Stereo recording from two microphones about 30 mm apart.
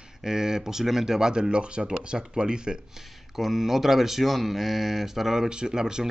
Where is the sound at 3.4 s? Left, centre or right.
Centre.